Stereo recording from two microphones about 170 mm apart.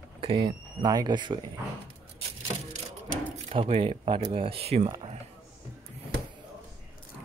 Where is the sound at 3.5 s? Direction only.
35° right (ahead or behind).